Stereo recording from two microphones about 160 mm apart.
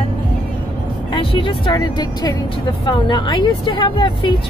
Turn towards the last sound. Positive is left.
turn(degrees=30)  # may be behind; listen again after turning